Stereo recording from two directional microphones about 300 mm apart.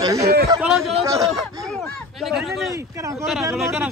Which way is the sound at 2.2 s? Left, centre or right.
Centre.